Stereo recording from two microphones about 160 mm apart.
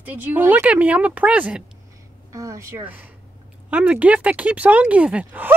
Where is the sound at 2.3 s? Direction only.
20° right (ahead or behind).